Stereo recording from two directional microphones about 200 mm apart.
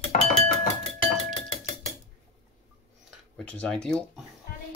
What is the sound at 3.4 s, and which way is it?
Speech, 5° left (ahead or behind).